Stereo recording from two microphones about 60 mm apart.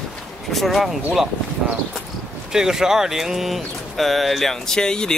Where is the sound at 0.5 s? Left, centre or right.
Centre.